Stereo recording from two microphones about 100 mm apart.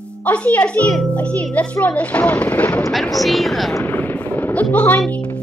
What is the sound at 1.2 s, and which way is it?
Speech, 15° left (ahead or behind).